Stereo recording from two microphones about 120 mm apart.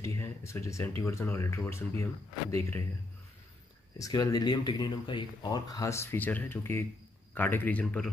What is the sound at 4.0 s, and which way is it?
Speech, 30° left (ahead or behind).